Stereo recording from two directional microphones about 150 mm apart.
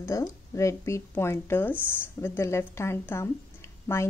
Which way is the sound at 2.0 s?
15° left (ahead or behind).